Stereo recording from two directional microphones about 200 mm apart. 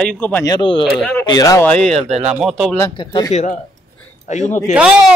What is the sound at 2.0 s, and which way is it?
Speech, 30° right (ahead or behind).